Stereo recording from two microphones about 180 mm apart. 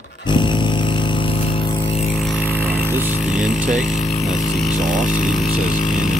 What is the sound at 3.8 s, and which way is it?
Speech, 40° left (ahead or behind).